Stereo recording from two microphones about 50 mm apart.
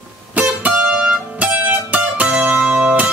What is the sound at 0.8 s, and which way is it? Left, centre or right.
Music, centre.